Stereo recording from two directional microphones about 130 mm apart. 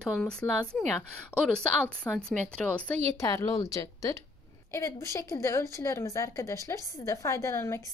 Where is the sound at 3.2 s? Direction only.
25° left (ahead or behind).